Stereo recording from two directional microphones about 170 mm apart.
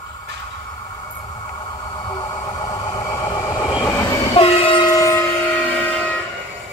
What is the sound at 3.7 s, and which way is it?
Train, 20° left (ahead or behind).